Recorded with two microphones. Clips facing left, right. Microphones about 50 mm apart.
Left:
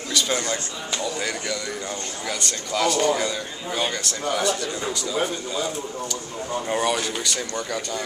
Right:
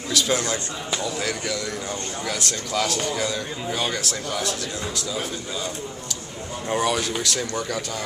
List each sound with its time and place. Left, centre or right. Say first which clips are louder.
0.1 s a man's voice: right 1 dB; centre
6.7 s a man's voice: right 2 dB; centre